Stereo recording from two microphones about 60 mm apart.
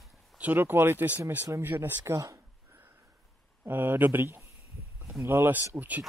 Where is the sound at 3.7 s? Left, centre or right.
Right.